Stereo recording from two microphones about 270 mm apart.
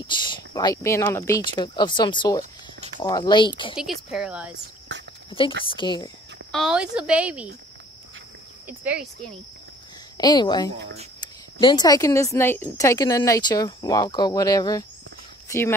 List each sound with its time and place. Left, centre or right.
0.0 s speech: centre
3.7 s a woman's voice: centre
4.9 s a sound: right
5.7 s speech: centre
6.5 s a woman's voice: centre
8.6 s speech: centre
10.1 s speech: centre